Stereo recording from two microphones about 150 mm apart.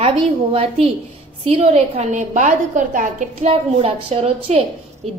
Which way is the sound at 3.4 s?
40° right (ahead or behind).